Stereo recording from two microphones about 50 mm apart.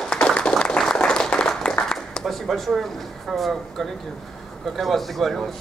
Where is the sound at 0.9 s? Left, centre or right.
Centre.